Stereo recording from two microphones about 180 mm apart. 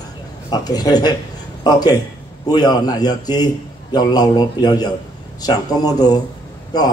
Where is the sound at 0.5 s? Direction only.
20° left (ahead or behind).